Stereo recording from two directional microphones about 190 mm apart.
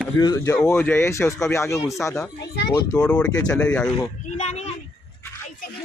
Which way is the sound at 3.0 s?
5° left (ahead or behind).